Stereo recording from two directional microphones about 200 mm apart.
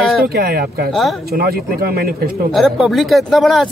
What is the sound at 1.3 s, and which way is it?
Speech, 50° right (ahead or behind).